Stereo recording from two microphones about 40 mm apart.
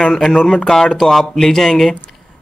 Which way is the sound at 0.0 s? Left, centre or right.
Centre.